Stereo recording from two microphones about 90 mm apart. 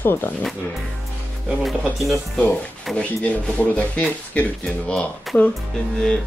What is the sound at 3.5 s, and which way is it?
Speech, 15° left (ahead or behind).